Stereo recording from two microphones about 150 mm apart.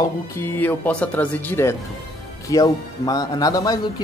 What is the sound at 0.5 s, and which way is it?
Speech, 10° left (ahead or behind).